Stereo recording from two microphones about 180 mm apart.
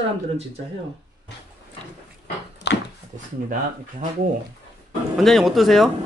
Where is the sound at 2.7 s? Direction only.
70° left (ahead or behind).